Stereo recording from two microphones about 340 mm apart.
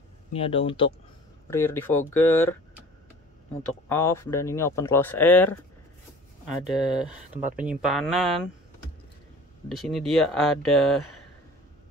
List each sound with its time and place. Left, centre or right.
0.3 s speech: centre
3.9 s speech: centre
9.7 s speech: centre